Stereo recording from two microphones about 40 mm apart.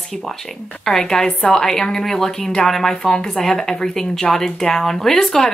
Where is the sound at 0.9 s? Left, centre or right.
Centre.